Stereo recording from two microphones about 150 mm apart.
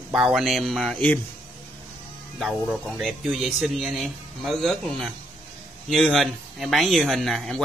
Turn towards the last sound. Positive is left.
turn(degrees=0)  # may be behind; listen again after turning